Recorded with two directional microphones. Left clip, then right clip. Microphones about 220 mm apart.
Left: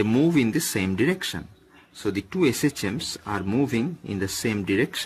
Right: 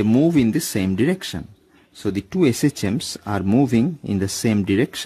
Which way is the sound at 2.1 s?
65° right (ahead or behind).